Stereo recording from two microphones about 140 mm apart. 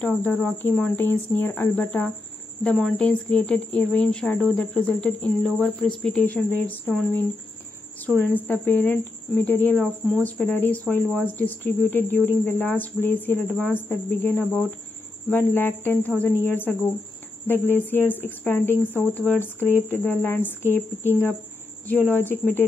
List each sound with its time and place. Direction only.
0.0 s speech: 10° left (ahead or behind)
8.2 s speech: 15° left (ahead or behind)